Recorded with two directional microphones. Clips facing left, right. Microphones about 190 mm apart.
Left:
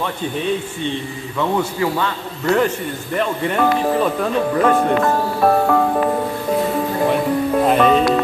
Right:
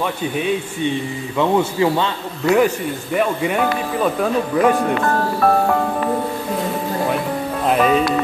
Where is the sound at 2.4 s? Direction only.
10° right (ahead or behind).